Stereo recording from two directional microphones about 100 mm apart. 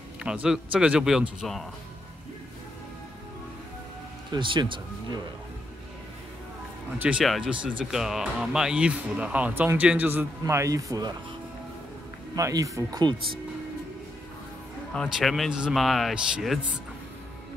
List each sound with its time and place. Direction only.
0.2 s speech: 10° right (ahead or behind)
4.3 s speech: 50° right (ahead or behind)
7.0 s a man's voice: 10° right (ahead or behind)
10.4 s a man's voice: 35° right (ahead or behind)
12.4 s a man's voice: 35° right (ahead or behind)
15.1 s speech: centre (ahead or behind)